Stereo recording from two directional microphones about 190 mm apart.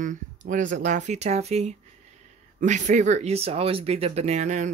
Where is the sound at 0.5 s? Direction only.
40° right (ahead or behind).